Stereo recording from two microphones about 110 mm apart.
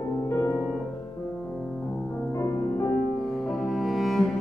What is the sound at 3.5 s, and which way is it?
Music, centre (ahead or behind).